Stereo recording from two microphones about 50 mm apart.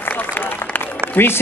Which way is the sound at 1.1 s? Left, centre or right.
Left.